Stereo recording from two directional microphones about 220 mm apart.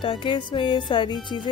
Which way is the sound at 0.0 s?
25° left (ahead or behind).